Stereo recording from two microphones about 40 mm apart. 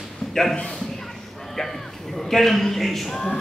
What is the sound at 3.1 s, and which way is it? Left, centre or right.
Speech, centre.